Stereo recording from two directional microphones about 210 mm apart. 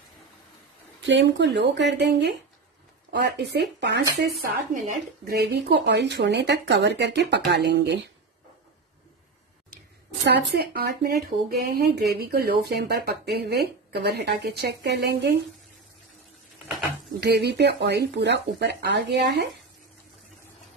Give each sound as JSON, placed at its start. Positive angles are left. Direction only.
{"t": 1.0, "sound": "speech", "side_deg": -60}
{"t": 10.2, "sound": "speech", "side_deg": -55}
{"t": 17.2, "sound": "speech", "side_deg": -50}